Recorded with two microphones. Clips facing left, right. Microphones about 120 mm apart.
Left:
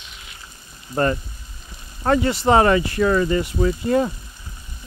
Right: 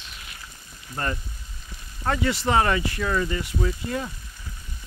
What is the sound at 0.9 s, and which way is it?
Speech, 45° left (ahead or behind).